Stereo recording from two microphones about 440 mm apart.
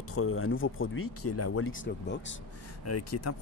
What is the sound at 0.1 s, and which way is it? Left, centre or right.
Speech, left.